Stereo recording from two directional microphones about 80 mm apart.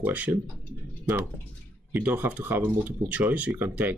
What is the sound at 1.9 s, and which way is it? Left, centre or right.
Speech, right.